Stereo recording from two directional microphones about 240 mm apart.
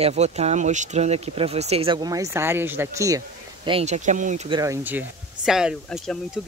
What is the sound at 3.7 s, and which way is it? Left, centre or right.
Speech, right.